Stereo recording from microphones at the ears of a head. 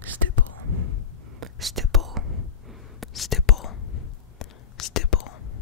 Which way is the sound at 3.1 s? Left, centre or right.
Left.